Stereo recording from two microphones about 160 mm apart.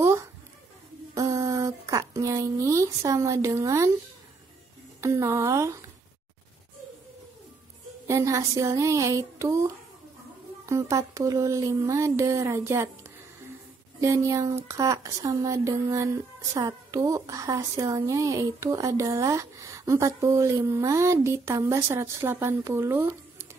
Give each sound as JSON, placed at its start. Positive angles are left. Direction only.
{"t": 0.0, "sound": "a sound", "side_deg": -20}
{"t": 5.0, "sound": "a woman's voice", "side_deg": -20}
{"t": 8.1, "sound": "a woman's voice", "side_deg": -20}
{"t": 14.0, "sound": "a woman's voice", "side_deg": -20}